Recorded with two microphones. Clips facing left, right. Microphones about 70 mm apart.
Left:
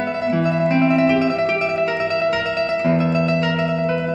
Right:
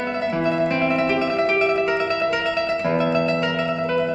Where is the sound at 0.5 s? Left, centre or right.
Centre.